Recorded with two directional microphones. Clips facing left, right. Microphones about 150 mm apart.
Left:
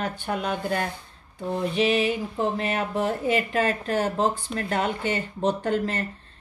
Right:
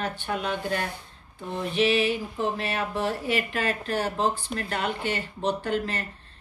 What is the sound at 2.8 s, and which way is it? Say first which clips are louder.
Speech: left 2 dB; 40° left (ahead or behind).